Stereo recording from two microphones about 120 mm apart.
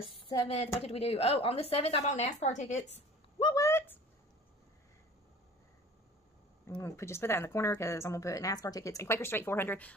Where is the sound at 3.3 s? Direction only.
40° left (ahead or behind).